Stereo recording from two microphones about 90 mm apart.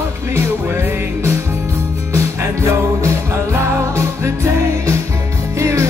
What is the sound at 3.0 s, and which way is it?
Music, 30° right (ahead or behind).